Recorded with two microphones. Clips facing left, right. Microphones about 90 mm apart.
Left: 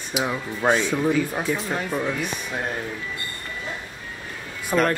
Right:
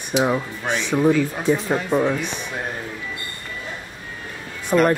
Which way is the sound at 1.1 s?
15° left (ahead or behind).